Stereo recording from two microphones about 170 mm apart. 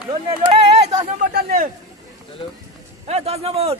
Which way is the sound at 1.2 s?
60° right (ahead or behind).